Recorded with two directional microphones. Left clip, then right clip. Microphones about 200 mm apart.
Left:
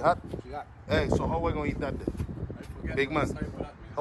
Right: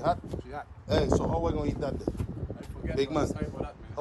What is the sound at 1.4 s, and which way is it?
Speech, 25° right (ahead or behind).